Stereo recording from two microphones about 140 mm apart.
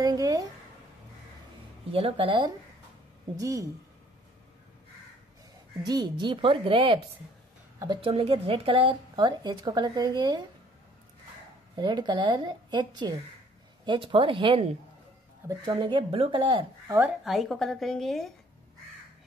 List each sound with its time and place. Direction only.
0.0 s a sound: 25° right (ahead or behind)
1.9 s a woman's voice: 45° right (ahead or behind)
3.3 s speech: 25° right (ahead or behind)
5.9 s a woman's voice: 30° right (ahead or behind)
8.1 s a woman's voice: 45° right (ahead or behind)
11.7 s a woman's voice: 30° right (ahead or behind)
17.2 s a woman's voice: centre (ahead or behind)